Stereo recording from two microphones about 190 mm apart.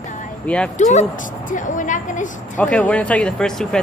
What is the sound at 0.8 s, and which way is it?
A woman's voice, 40° left (ahead or behind).